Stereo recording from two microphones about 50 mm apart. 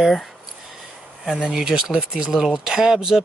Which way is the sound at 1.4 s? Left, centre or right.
Centre.